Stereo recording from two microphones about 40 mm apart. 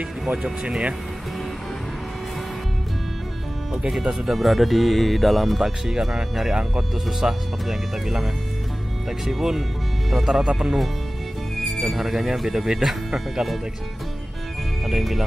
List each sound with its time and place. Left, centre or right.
0.3 s speech: right
4.3 s speech: centre
5.6 s speech: centre
11.5 s speech: centre
14.9 s speech: centre